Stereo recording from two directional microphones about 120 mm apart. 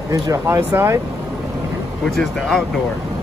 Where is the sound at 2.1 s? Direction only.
Centre (ahead or behind).